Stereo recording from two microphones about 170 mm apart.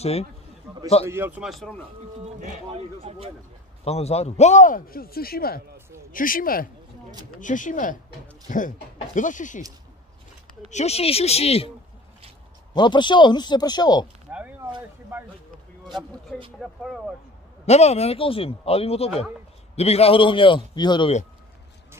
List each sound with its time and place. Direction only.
0.0 s speech: 35° left (ahead or behind)
1.0 s a man's voice: 15° right (ahead or behind)
1.4 s speech: centre (ahead or behind)
2.2 s speech: 40° right (ahead or behind)
3.8 s a man's voice: 40° left (ahead or behind)
10.7 s speech: 40° left (ahead or behind)
12.7 s a man's voice: 25° left (ahead or behind)
14.3 s a sound: 10° right (ahead or behind)
15.1 s a man's voice: 10° right (ahead or behind)
16.5 s speech: centre (ahead or behind)
17.6 s a man's voice: 40° left (ahead or behind)